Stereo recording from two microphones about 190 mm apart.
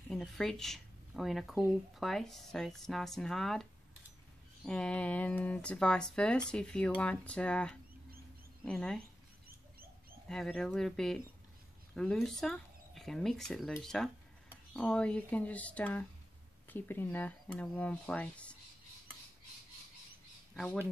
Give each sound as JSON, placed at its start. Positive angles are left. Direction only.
{"t": 0.1, "sound": "speech", "side_deg": 0}
{"t": 4.6, "sound": "speech", "side_deg": 5}
{"t": 10.2, "sound": "speech", "side_deg": 0}
{"t": 20.5, "sound": "speech", "side_deg": 0}